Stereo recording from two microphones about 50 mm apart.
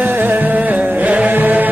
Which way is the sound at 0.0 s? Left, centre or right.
Right.